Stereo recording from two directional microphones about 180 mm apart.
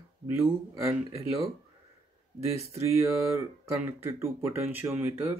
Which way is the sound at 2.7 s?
15° right (ahead or behind).